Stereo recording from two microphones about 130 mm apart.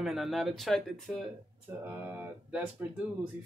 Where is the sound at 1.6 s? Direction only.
15° right (ahead or behind).